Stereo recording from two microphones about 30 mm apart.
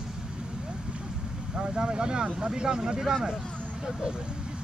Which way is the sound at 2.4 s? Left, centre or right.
Right.